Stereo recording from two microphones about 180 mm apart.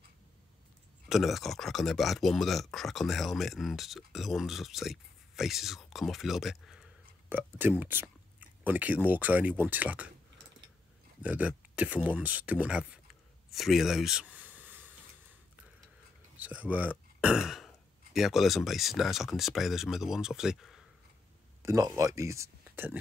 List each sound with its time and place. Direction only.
1.0 s speech: centre (ahead or behind)
7.2 s speech: 10° right (ahead or behind)
11.2 s speech: 10° right (ahead or behind)
13.5 s a sound: centre (ahead or behind)
16.3 s speech: 10° right (ahead or behind)
17.2 s throat clearing: 5° right (ahead or behind)
18.1 s speech: centre (ahead or behind)
21.6 s speech: 15° right (ahead or behind)